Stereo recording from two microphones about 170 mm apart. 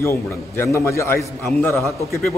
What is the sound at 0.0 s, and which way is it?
A man's voice, 15° left (ahead or behind).